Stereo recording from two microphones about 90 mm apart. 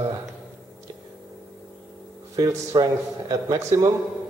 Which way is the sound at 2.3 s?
40° right (ahead or behind).